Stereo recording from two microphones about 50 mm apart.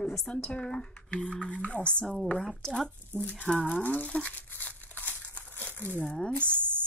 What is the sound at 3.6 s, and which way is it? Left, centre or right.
Speech, left.